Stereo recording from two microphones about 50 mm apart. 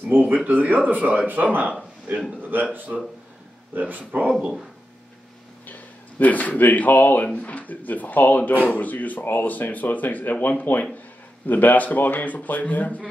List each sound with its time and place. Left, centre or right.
0.2 s speech: right
2.9 s speech: right
4.3 s speech: centre
5.7 s speech: left